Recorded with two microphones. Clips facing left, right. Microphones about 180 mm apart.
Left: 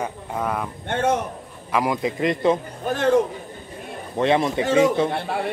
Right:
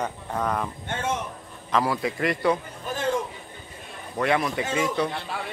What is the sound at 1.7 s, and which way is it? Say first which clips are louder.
Speech: left 2 dB; 15° left (ahead or behind).